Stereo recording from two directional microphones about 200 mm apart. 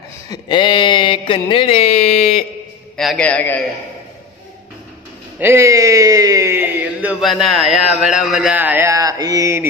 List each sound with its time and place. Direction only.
0.3 s a sound: 25° left (ahead or behind)
3.0 s a man's voice: 5° left (ahead or behind)
5.4 s speech: 15° right (ahead or behind)